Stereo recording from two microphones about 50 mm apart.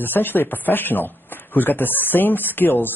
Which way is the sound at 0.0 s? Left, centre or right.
Left.